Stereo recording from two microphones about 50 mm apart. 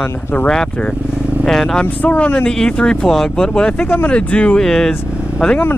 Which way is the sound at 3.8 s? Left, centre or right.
Left.